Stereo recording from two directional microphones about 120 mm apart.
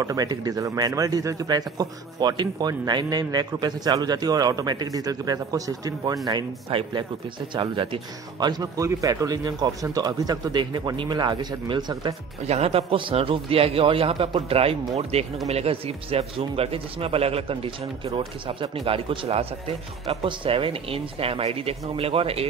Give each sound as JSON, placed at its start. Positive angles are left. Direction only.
{"t": 0.0, "sound": "speech", "side_deg": -30}
{"t": 6.7, "sound": "speech", "side_deg": -45}
{"t": 12.4, "sound": "speech", "side_deg": -60}